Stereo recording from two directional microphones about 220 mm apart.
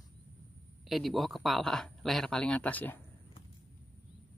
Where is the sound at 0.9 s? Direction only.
Centre (ahead or behind).